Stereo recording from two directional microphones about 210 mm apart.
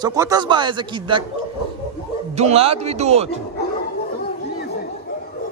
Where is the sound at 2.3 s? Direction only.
30° right (ahead or behind).